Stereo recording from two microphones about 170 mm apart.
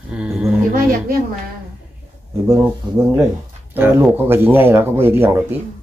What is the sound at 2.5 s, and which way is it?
Speech, 15° right (ahead or behind).